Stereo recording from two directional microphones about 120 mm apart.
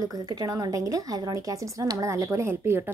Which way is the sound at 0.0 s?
35° right (ahead or behind).